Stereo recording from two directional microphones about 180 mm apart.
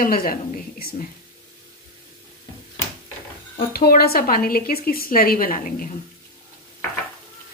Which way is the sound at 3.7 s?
60° left (ahead or behind).